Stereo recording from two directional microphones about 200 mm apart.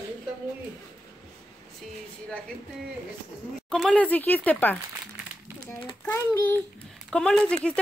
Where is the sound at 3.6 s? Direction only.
5° left (ahead or behind).